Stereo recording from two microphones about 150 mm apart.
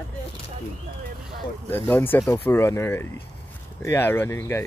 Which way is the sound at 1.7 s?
15° left (ahead or behind).